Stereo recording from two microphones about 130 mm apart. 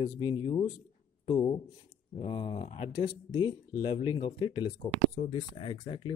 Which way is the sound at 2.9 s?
90° left.